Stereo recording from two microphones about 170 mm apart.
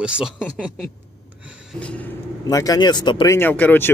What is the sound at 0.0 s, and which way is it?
Speech, 5° right (ahead or behind).